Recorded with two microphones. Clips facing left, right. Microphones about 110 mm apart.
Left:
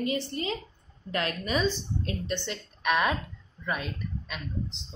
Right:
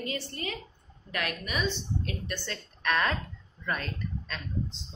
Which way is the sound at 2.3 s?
20° left (ahead or behind).